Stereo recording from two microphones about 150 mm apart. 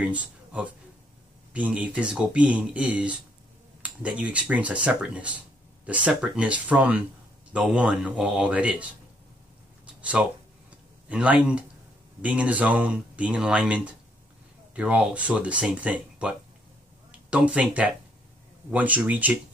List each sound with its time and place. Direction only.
0.0 s speech: 10° right (ahead or behind)
10.2 s speech: 5° right (ahead or behind)